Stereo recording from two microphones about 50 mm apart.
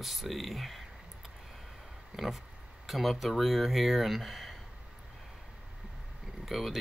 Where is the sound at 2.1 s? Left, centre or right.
Centre.